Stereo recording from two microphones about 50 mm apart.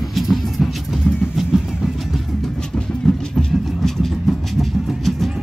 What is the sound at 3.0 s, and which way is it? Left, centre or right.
Vehicle, centre.